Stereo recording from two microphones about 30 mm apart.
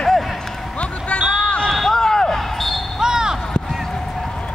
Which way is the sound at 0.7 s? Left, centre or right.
Left.